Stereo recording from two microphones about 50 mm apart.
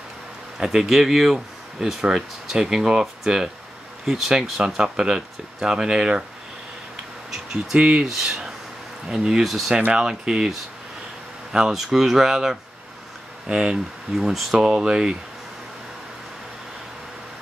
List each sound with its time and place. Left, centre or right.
0.6 s speech: centre
7.7 s speech: right
8.1 s speech: centre
9.4 s speech: centre
9.9 s speech: centre
11.5 s speech: centre
13.5 s speech: centre
14.1 s speech: centre